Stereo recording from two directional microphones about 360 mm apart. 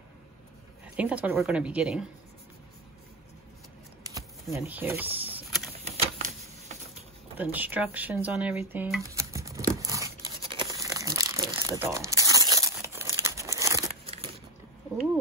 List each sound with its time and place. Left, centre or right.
0.9 s a woman's voice: centre
4.1 s power windows: centre
5.9 s a sound: centre
7.3 s speech: centre
9.8 s crumpling: centre